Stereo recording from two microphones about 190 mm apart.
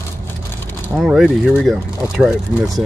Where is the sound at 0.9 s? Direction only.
Centre (ahead or behind).